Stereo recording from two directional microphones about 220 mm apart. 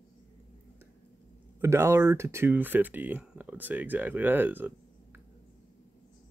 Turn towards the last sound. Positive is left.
turn(degrees=-10)  # may be behind; listen again after turning